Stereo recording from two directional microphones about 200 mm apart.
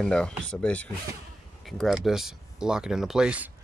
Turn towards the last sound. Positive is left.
turn(degrees=-5)  # may be behind; listen again after turning